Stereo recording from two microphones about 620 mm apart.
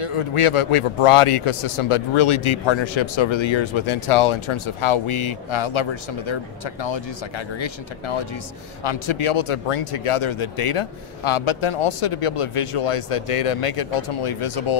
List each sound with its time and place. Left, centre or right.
0.0 s a man's voice: left
8.8 s speech: left